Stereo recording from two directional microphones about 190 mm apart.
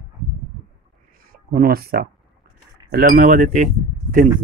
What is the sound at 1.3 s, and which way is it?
Speech, 50° right (ahead or behind).